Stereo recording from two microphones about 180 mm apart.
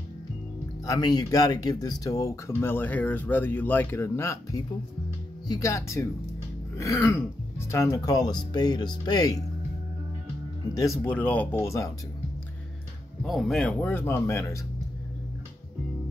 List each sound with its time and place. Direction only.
0.8 s speech: 20° left (ahead or behind)
10.7 s speech: 15° left (ahead or behind)
13.2 s speech: centre (ahead or behind)